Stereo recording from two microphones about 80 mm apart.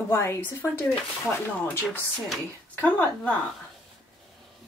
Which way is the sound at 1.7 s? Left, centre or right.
Left.